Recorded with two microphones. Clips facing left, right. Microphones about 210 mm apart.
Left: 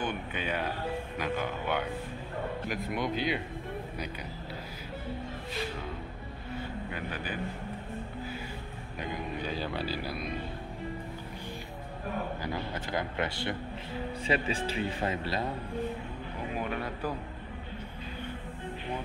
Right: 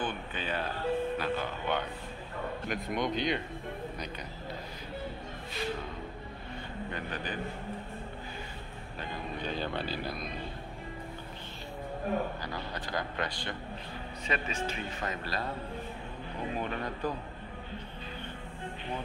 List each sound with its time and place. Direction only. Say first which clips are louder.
0.0 s speech: left 2 dB; 10° left (ahead or behind)
6.5 s vehicle: left 2 dB; 10° left (ahead or behind)
9.0 s vehicle: left 2 dB; 5° left (ahead or behind)
12.4 s a man's voice: left 3 dB; 20° left (ahead or behind)
16.6 s speech: even; 10° left (ahead or behind)